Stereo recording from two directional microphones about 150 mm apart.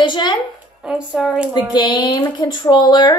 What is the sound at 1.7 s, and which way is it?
Music, 30° left (ahead or behind).